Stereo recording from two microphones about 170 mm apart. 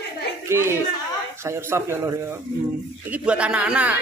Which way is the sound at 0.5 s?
15° right (ahead or behind).